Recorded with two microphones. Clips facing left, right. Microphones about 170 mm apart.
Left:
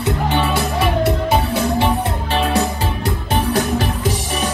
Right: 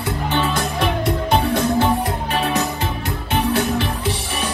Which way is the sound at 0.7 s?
5° left (ahead or behind).